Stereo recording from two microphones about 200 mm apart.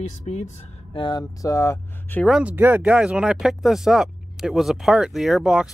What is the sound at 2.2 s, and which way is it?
Speech, 5° right (ahead or behind).